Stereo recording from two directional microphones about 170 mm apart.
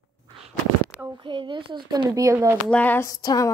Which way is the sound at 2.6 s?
10° left (ahead or behind).